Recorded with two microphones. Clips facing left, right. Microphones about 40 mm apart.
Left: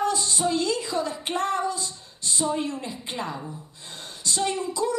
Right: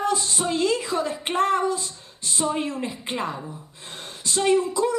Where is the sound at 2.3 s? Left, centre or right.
Right.